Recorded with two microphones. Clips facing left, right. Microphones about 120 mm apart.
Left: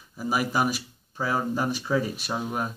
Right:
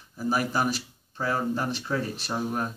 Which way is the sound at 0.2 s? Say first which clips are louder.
Left 1 dB; 10° left (ahead or behind).